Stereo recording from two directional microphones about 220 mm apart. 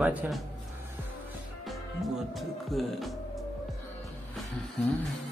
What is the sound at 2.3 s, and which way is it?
Speech, centre (ahead or behind).